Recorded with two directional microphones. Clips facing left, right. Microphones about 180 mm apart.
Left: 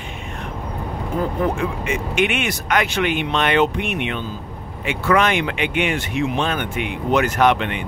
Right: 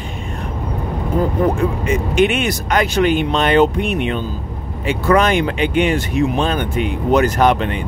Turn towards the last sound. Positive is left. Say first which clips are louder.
# right 2 dB
turn(degrees=-35)  # may be behind; listen again after turning